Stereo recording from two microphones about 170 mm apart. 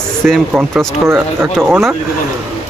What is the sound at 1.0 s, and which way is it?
Speech, 15° right (ahead or behind).